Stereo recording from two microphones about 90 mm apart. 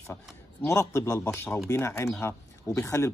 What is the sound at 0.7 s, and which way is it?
Speech, 35° left (ahead or behind).